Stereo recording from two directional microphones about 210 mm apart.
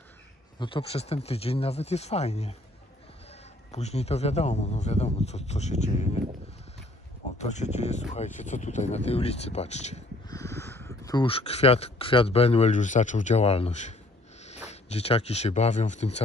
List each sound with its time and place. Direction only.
0.6 s a man's voice: 25° left (ahead or behind)
7.3 s a man's voice: 35° left (ahead or behind)
10.2 s a man's voice: 15° left (ahead or behind); by 16.2 s 35° left (ahead or behind)